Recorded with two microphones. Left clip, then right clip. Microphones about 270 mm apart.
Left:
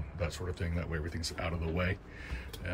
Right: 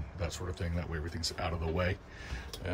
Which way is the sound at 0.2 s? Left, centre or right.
Centre.